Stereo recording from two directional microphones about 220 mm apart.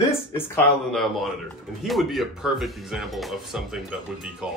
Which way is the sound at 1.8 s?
Centre (ahead or behind).